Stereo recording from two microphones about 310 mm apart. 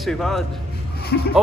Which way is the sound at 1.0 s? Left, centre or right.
Left.